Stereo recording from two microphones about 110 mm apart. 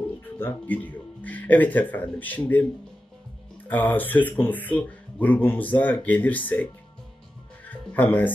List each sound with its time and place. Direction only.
0.4 s speech: 15° left (ahead or behind)
3.6 s speech: 15° left (ahead or behind)
7.6 s music: 15° left (ahead or behind)